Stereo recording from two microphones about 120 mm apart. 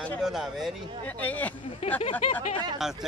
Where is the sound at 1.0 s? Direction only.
15° left (ahead or behind).